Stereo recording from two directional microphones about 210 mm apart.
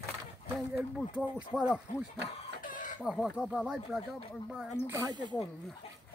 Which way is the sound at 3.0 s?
Centre (ahead or behind).